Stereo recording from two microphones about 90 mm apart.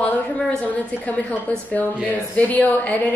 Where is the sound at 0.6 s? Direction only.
15° left (ahead or behind).